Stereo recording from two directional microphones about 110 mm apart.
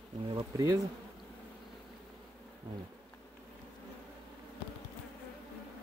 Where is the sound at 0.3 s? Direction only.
35° right (ahead or behind).